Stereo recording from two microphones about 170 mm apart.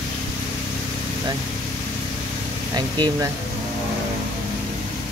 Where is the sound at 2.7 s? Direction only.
25° right (ahead or behind).